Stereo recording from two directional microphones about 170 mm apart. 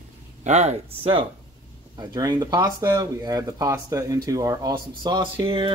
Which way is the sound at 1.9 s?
25° right (ahead or behind).